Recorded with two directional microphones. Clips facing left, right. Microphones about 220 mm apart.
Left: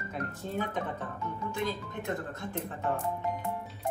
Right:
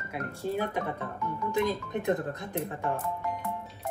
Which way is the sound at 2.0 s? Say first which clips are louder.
Right 5 dB; 20° right (ahead or behind).